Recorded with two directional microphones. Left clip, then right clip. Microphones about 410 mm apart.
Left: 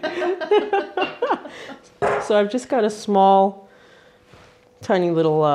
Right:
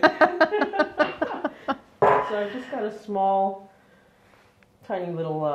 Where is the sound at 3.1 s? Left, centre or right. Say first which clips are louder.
Left 8 dB; left.